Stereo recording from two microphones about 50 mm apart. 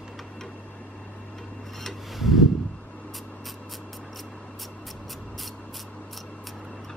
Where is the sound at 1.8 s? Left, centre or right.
Centre.